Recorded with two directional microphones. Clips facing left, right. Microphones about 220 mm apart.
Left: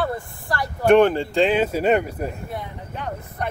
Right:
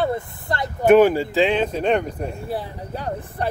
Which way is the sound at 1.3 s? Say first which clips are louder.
Even; 5° left (ahead or behind).